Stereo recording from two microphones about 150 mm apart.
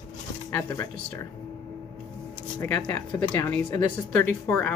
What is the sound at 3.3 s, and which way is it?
Speech, 20° left (ahead or behind).